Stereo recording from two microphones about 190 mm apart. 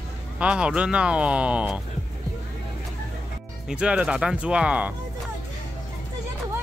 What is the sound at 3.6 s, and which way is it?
Speech, 5° right (ahead or behind).